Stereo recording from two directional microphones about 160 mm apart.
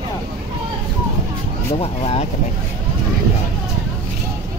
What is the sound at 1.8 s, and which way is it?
Speech, 40° left (ahead or behind).